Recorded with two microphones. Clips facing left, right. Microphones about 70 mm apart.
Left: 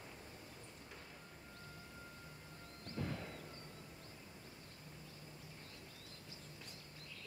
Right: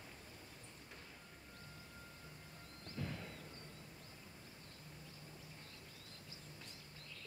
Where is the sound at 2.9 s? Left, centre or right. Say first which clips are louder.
Left 3 dB; left.